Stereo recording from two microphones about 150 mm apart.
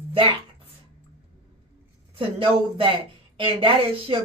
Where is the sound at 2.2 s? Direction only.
35° right (ahead or behind).